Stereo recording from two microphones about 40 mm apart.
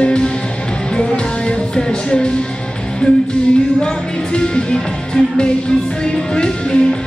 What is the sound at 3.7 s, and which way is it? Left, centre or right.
Speech, left.